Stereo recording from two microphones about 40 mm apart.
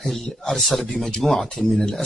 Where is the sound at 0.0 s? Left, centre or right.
Centre.